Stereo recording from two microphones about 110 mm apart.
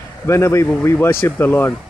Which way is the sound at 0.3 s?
25° left (ahead or behind).